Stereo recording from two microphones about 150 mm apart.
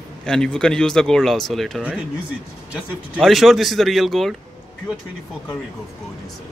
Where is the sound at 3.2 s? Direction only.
Centre (ahead or behind).